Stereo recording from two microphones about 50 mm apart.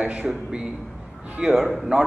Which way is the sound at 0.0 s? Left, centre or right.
Right.